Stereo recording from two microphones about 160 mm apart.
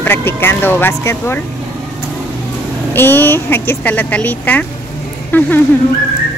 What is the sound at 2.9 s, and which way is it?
Speech, 15° left (ahead or behind).